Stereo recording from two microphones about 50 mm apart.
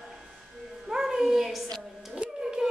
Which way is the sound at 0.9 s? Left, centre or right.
Centre.